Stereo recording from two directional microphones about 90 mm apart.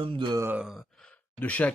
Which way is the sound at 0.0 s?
70° right (ahead or behind).